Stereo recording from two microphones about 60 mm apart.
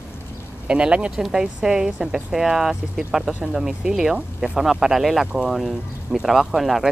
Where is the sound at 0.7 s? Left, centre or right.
Centre.